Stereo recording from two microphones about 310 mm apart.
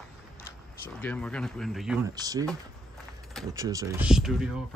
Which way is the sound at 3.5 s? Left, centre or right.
Centre.